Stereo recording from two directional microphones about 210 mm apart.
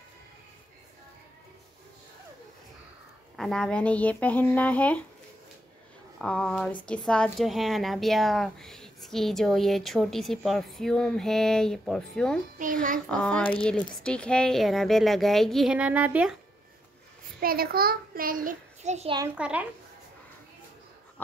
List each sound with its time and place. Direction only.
3.3 s speech: centre (ahead or behind)
6.1 s speech: 5° left (ahead or behind)
12.5 s a child's voice: 40° right (ahead or behind)
13.1 s speech: 5° left (ahead or behind)
17.4 s a child's voice: 45° right (ahead or behind)
19.1 s a child's voice: 10° right (ahead or behind)